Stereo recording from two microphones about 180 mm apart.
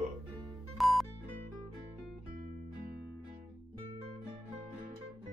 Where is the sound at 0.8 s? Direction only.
Centre (ahead or behind).